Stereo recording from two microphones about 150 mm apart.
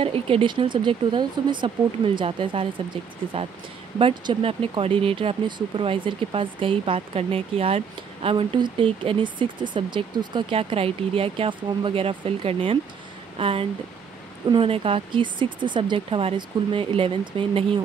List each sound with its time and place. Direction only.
0.0 s speech: 40° right (ahead or behind)